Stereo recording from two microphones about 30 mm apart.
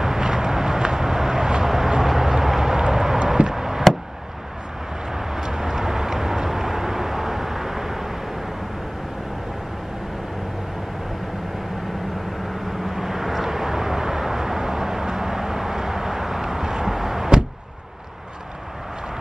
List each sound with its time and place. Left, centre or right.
0.0 s vehicle: centre
2.9 s a sound: centre
5.1 s vehicle: centre
12.8 s vehicle: centre